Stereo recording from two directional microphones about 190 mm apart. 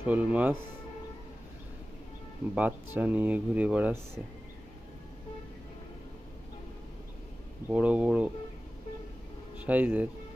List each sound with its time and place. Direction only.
0.0 s speech: 10° right (ahead or behind)
2.5 s speech: 10° right (ahead or behind)
7.6 s speech: 5° right (ahead or behind)
9.6 s speech: 10° right (ahead or behind)